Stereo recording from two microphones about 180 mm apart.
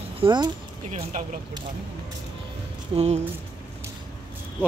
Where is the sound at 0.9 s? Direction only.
45° right (ahead or behind).